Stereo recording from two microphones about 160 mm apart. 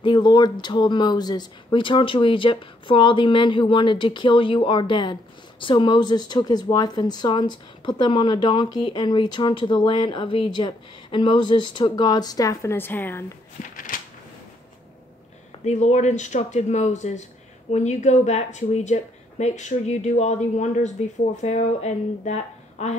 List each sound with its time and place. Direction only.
0.0 s speech: 30° left (ahead or behind); by 13.2 s 10° left (ahead or behind)
13.7 s a sound: 60° left (ahead or behind)
15.6 s speech: 45° left (ahead or behind)